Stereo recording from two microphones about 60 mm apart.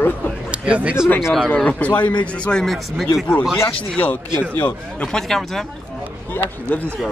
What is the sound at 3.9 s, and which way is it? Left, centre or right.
Speech, left.